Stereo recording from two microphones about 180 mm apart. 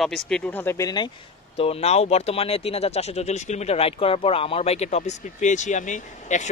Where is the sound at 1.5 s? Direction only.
35° left (ahead or behind).